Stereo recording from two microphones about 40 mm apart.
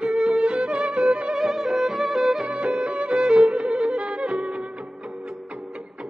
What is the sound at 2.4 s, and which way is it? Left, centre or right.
Music, right.